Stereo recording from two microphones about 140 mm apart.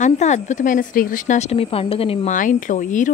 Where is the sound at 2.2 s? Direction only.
70° left (ahead or behind).